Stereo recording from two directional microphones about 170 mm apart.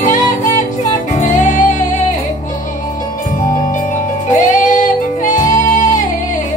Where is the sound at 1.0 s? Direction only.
45° left (ahead or behind).